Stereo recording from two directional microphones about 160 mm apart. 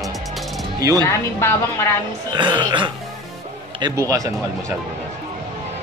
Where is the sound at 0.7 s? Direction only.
20° right (ahead or behind).